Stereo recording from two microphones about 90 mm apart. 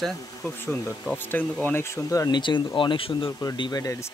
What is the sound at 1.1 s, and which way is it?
Speech, 20° left (ahead or behind).